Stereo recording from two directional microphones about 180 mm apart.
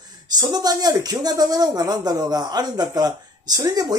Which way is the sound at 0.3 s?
20° right (ahead or behind).